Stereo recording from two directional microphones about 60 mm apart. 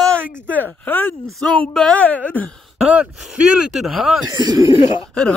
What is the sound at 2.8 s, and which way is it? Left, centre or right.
Speech, centre.